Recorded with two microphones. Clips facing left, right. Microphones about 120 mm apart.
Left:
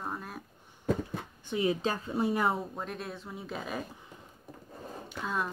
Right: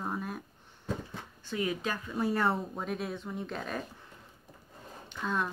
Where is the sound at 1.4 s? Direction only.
25° left (ahead or behind).